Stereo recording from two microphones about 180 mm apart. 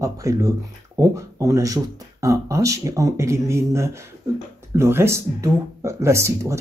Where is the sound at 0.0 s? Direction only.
15° right (ahead or behind).